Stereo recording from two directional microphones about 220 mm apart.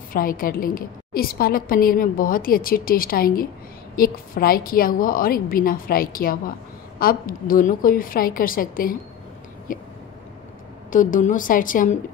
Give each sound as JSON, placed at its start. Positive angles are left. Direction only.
{"t": 0.1, "sound": "a woman's voice", "side_deg": 40}
{"t": 10.9, "sound": "a woman's voice", "side_deg": 35}